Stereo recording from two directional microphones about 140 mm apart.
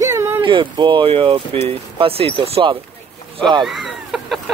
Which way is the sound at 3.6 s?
Centre (ahead or behind).